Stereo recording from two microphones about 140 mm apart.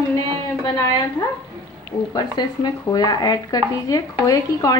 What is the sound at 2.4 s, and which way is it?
A woman's voice, 30° left (ahead or behind).